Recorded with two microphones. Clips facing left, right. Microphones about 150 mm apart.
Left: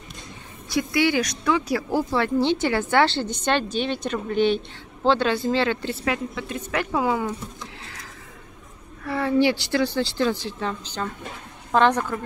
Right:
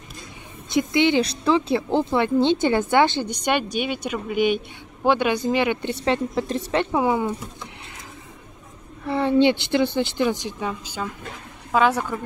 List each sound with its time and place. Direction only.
0.7 s a woman's voice: 20° right (ahead or behind)
6.7 s speech: 20° right (ahead or behind)
9.0 s a woman's voice: 20° right (ahead or behind)